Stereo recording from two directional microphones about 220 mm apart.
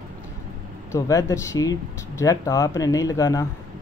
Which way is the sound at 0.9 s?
15° left (ahead or behind).